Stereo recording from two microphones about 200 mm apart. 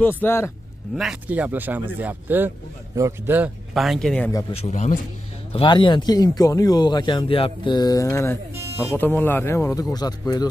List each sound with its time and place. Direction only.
0.2 s speech: 10° left (ahead or behind)
0.9 s speech: 5° right (ahead or behind)
4.5 s speech: 30° left (ahead or behind)
5.5 s speech: 25° left (ahead or behind)